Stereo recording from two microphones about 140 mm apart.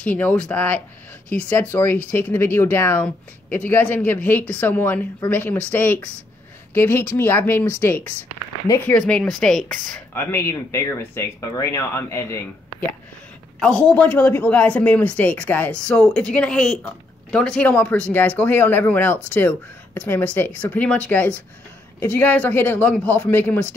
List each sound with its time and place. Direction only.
0.0 s speech: 10° left (ahead or behind)
10.1 s speech: 20° left (ahead or behind)
13.6 s speech: 5° left (ahead or behind)
22.0 s speech: 10° left (ahead or behind)